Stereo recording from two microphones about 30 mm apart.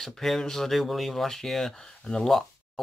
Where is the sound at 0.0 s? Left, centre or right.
Centre.